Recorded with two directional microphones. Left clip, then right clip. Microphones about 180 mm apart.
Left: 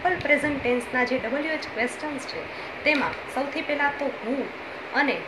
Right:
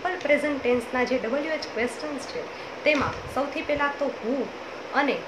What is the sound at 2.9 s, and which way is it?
Speech, 15° right (ahead or behind).